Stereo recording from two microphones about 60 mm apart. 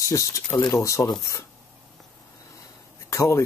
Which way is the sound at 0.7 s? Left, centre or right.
Left.